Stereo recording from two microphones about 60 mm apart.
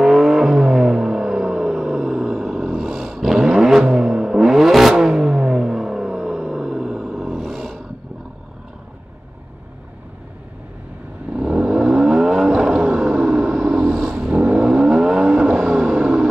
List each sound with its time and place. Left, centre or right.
0.0 s a sound: centre
11.3 s vehicle: centre
14.5 s vehicle: centre